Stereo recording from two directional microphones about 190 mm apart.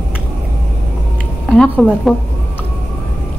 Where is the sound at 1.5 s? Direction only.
Centre (ahead or behind).